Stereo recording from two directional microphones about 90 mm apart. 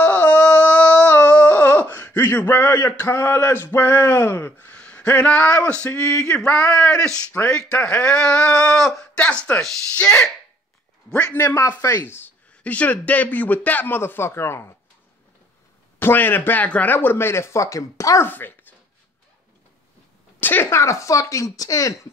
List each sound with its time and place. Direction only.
0.0 s a sound: 20° left (ahead or behind)
2.1 s a man's voice: 25° left (ahead or behind)
5.9 s speech: 35° left (ahead or behind)
6.1 s a man's voice: 10° left (ahead or behind); by 14.7 s 30° left (ahead or behind)
16.0 s a man's voice: 20° left (ahead or behind)
18.2 s speech: 20° left (ahead or behind)
20.3 s speech: 20° left (ahead or behind)
20.8 s speech: 35° left (ahead or behind)